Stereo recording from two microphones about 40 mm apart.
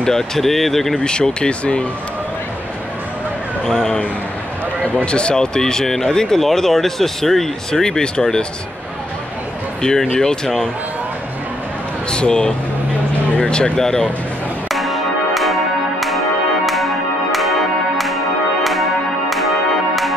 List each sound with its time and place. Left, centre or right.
0.0 s speech: centre
0.9 s speech: centre
3.6 s speech: centre
5.0 s speech: left
9.8 s speech: centre
12.1 s speech: left
14.7 s music: centre